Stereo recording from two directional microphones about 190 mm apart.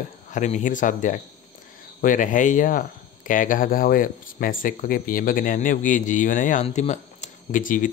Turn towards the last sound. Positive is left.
turn(degrees=45)  # may be behind; listen again after turning